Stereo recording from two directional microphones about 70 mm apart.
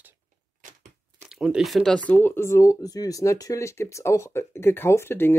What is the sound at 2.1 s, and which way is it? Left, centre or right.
Speech, left.